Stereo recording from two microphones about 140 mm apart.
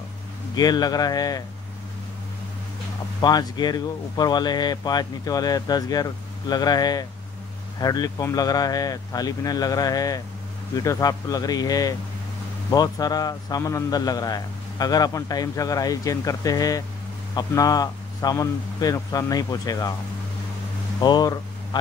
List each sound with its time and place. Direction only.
0.6 s a man's voice: 30° left (ahead or behind)
3.2 s a man's voice: 30° left (ahead or behind)
21.0 s a man's voice: 30° left (ahead or behind)